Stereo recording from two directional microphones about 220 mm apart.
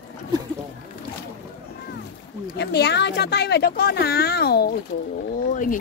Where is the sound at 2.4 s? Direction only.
50° left (ahead or behind).